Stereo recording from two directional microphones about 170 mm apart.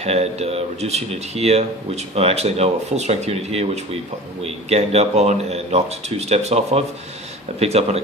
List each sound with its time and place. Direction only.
0.0 s speech: 40° right (ahead or behind)